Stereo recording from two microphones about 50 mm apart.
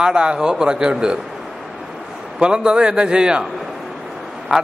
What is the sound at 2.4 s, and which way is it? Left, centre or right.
A man's voice, centre.